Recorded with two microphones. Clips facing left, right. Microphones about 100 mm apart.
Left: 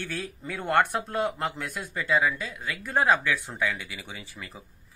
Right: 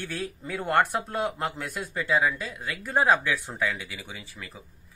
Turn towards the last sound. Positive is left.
turn(degrees=0)  # may be behind; listen again after turning